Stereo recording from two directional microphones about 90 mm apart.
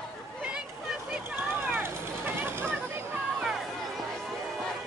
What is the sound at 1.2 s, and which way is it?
Vehicle, 25° right (ahead or behind).